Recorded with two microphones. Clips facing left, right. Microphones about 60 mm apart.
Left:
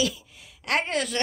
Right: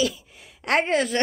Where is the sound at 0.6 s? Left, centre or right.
Right.